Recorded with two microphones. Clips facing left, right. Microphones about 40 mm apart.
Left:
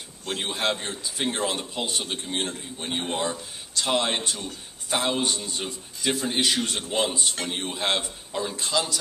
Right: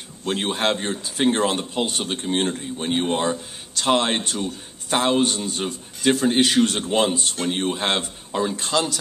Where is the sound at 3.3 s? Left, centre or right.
Right.